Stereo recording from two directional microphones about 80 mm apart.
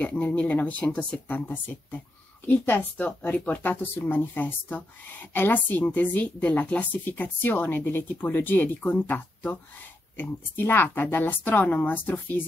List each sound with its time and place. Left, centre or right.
0.0 s a woman's voice: centre